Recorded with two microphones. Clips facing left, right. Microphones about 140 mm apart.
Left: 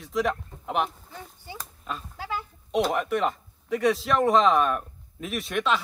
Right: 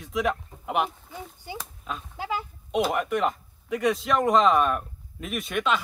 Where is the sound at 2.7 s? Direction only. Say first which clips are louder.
Even; centre (ahead or behind).